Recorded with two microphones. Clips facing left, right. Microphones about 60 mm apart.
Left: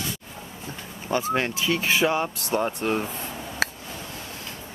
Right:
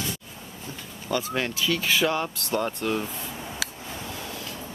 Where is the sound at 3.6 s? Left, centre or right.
Left.